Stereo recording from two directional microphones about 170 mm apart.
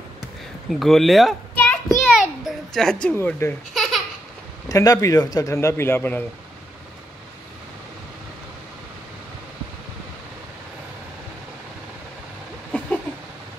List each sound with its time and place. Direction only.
0.7 s speech: centre (ahead or behind)
1.6 s a sound: 10° left (ahead or behind)
2.1 s a child's voice: centre (ahead or behind)
3.7 s baby laughter: centre (ahead or behind)
4.6 s speech: 20° left (ahead or behind)
12.7 s a sound: 5° left (ahead or behind)